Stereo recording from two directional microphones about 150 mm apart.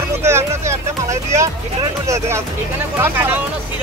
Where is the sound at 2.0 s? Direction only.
15° right (ahead or behind).